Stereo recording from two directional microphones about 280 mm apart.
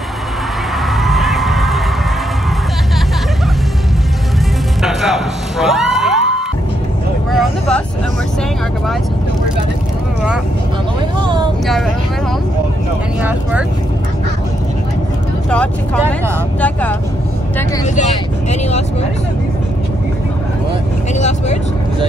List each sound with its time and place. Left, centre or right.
1.0 s a sound: centre
4.8 s music: centre
7.2 s vehicle: centre
11.1 s a sound: centre
13.2 s vehicle: centre
15.5 s vehicle: centre
17.8 s vehicle: left
21.2 s vehicle: left